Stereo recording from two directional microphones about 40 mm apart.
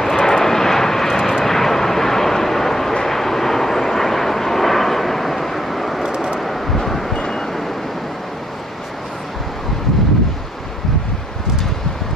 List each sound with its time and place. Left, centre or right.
0.0 s vehicle: centre
6.0 s vehicle: centre
6.4 s vehicle: centre